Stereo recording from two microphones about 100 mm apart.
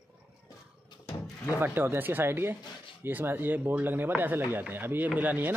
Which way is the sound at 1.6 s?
20° right (ahead or behind).